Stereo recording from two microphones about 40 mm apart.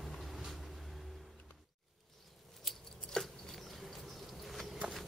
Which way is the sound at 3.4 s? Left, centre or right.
Centre.